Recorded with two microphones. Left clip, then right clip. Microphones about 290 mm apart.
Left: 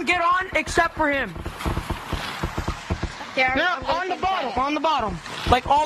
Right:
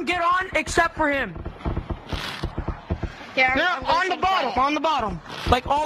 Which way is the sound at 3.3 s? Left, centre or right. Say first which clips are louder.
Right 1 dB; centre.